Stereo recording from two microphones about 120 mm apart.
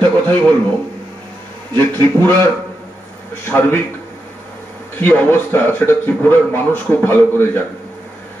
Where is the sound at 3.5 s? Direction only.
15° left (ahead or behind).